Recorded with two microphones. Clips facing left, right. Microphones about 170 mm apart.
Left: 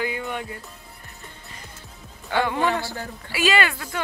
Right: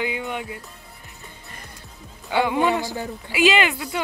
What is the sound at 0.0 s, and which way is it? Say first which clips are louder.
Music: right 1 dB; 15° right (ahead or behind).